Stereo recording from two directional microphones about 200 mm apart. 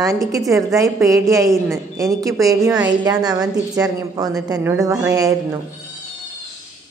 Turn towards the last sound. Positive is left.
turn(degrees=-15)  # may be behind; listen again after turning